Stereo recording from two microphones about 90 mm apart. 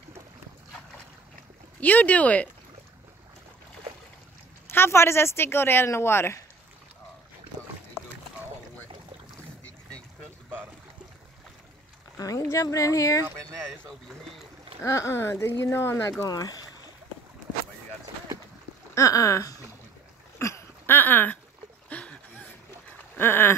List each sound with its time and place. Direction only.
1.8 s speech: 15° left (ahead or behind)
4.6 s speech: 25° left (ahead or behind)
12.2 s speech: 40° left (ahead or behind)
13.5 s speech: centre (ahead or behind)
14.8 s speech: 30° left (ahead or behind)
16.3 s speech: 45° left (ahead or behind)
18.9 s speech: 40° left (ahead or behind)
20.3 s a sound: 30° left (ahead or behind); by 22.5 s 15° left (ahead or behind)
23.1 s a sound: 25° left (ahead or behind)